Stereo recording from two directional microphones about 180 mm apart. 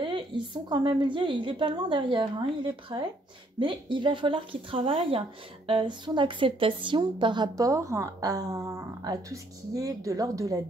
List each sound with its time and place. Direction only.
0.0 s a woman's voice: 25° right (ahead or behind)